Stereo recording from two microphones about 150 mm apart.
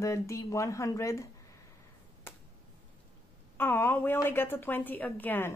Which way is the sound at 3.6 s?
15° left (ahead or behind).